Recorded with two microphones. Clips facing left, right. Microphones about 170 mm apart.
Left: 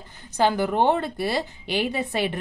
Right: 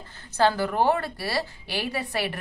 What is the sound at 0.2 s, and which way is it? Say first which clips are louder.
A woman's voice: left 1 dB; 15° left (ahead or behind).